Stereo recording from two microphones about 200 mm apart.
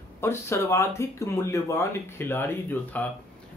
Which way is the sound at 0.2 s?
15° left (ahead or behind).